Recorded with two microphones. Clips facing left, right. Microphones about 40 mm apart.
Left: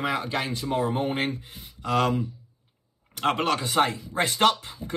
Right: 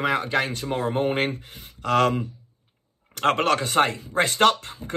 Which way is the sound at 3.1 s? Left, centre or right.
Right.